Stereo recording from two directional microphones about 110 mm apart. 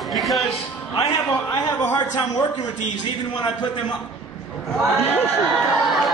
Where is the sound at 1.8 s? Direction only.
30° left (ahead or behind).